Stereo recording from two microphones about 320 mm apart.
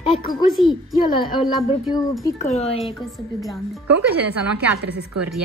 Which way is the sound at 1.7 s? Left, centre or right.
Centre.